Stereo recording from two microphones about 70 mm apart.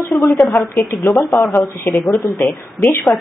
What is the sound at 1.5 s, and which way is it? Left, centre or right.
Speech, left.